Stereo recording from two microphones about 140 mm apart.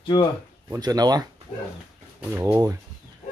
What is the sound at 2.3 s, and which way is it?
Speech, 20° right (ahead or behind).